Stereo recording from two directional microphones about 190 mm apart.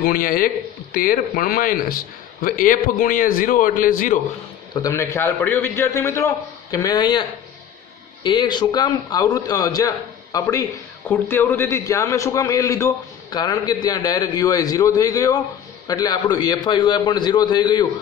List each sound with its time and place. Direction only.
0.0 s a man's voice: 50° left (ahead or behind)
4.7 s a man's voice: 15° left (ahead or behind)